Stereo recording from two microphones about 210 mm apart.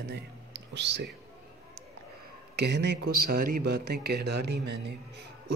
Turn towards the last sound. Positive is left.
turn(degrees=-55)  # may be behind; listen again after turning